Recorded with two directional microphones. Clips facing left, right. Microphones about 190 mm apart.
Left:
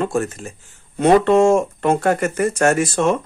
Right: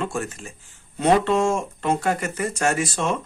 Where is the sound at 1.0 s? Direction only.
55° left (ahead or behind).